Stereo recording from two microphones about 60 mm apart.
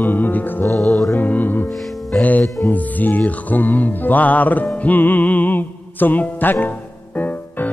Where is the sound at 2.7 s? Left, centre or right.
Left.